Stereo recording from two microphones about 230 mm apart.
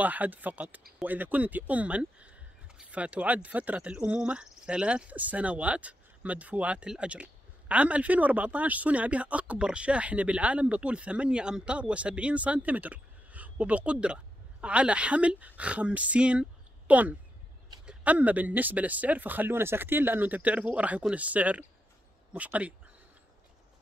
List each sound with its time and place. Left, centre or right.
0.0 s speech: centre